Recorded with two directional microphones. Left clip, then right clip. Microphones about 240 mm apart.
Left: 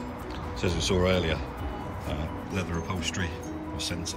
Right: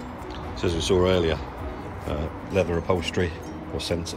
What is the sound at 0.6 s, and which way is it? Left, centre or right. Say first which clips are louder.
Speech: right 5 dB; centre.